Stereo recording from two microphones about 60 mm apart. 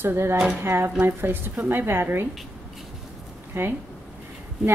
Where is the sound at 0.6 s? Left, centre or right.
Right.